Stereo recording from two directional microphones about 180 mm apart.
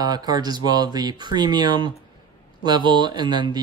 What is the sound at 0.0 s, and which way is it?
Speech, 20° right (ahead or behind).